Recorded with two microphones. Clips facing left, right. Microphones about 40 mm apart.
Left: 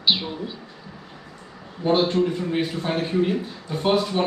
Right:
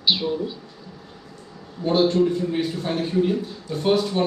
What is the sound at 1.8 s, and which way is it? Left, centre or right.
A man's voice, left.